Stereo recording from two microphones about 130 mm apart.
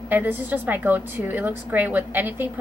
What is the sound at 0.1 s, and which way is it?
A woman's voice, 15° right (ahead or behind).